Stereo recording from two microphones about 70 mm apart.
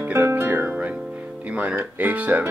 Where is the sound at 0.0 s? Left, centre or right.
Right.